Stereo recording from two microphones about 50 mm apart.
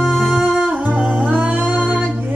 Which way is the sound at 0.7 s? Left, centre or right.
Right.